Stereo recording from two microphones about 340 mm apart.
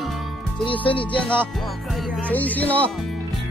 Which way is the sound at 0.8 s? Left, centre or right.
Centre.